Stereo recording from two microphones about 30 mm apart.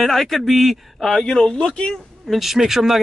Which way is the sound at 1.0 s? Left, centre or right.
Left.